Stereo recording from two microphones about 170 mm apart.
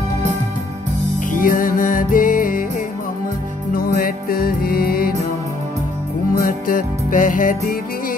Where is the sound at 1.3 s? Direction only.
55° left (ahead or behind).